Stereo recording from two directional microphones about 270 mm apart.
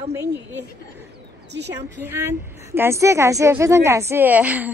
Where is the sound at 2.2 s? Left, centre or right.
Centre.